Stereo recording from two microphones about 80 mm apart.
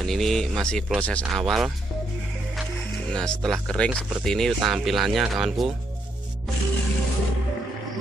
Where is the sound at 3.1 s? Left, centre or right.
Centre.